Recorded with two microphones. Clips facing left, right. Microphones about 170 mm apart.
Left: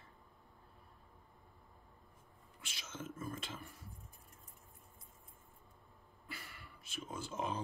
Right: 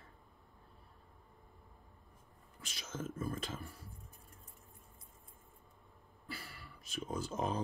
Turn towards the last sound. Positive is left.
turn(degrees=-40)  # may be behind; listen again after turning